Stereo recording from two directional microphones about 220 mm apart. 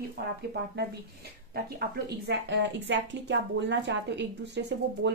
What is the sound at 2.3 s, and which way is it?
A woman's voice, 55° right (ahead or behind).